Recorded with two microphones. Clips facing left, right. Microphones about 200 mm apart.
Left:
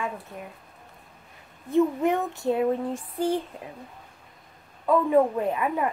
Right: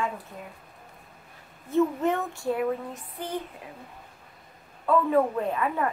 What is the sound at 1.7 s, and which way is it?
Child singing, 15° left (ahead or behind).